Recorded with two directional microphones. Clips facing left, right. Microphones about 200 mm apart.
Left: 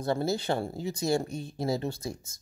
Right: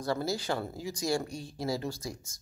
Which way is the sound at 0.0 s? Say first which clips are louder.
Left 3 dB; 25° left (ahead or behind).